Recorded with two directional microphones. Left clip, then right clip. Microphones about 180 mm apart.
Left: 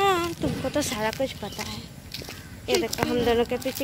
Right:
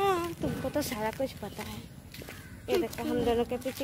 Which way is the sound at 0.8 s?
5° right (ahead or behind).